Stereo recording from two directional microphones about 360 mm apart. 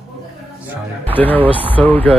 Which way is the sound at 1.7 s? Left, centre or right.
Centre.